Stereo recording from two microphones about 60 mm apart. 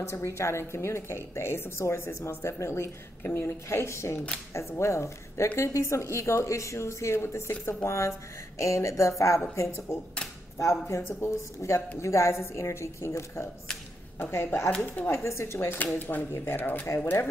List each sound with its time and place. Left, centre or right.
0.0 s a woman's voice: left
11.0 s a woman's voice: left
14.1 s a woman's voice: left
16.0 s speech: left
16.8 s a woman's voice: left